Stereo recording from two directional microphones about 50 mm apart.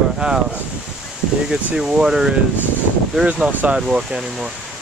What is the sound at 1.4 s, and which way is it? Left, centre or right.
Speech, centre.